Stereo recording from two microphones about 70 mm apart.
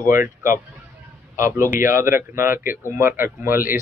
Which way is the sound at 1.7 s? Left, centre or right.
Right.